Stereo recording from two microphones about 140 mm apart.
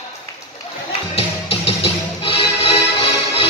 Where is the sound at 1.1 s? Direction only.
45° left (ahead or behind).